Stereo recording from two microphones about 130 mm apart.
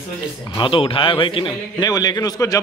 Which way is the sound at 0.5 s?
40° left (ahead or behind).